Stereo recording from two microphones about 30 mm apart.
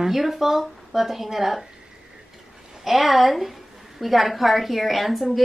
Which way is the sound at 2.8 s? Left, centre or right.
Centre.